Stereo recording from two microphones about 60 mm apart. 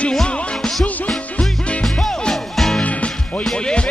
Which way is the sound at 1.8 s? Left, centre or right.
Centre.